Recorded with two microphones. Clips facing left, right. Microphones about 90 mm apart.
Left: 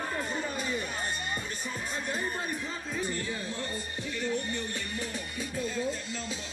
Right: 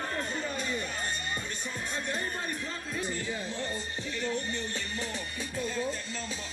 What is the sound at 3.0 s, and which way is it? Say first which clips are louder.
Music: right 1 dB; 25° right (ahead or behind).